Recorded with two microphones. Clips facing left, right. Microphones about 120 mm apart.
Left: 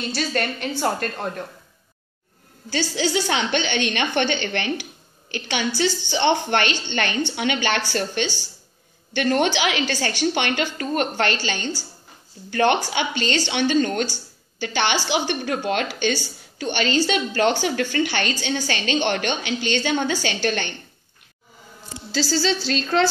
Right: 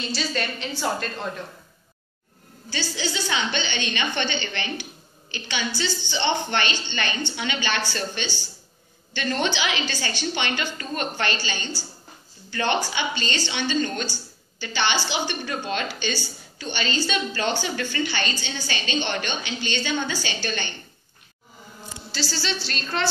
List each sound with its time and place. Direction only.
0.1 s a woman's voice: 55° left (ahead or behind)
2.7 s a woman's voice: 75° left (ahead or behind)
22.8 s a woman's voice: 90° left